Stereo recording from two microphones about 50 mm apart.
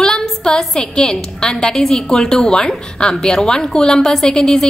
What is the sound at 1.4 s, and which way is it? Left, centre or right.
A woman's voice, centre.